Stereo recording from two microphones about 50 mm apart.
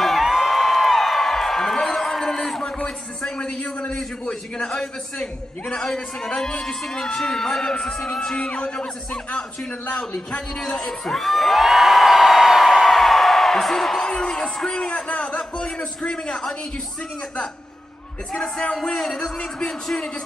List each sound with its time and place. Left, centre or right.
0.0 s music: centre
2.6 s a sound: left
4.6 s a man's voice: centre
9.9 s whoop: centre
14.0 s music: centre
14.9 s a man's voice: left
18.3 s a man's voice: centre